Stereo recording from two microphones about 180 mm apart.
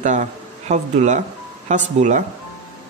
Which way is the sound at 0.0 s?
40° right (ahead or behind).